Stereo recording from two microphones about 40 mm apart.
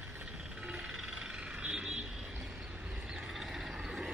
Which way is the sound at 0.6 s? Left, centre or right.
Right.